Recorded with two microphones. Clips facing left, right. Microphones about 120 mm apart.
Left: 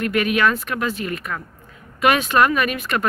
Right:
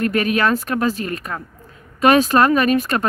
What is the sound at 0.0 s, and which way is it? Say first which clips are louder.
Speech: right 1 dB; 35° right (ahead or behind).